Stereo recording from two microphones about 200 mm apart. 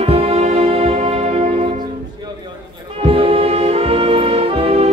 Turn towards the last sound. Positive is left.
turn(degrees=-30)  # may be behind; listen again after turning